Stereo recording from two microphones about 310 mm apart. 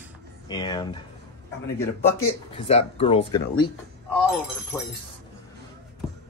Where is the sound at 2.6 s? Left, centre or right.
Centre.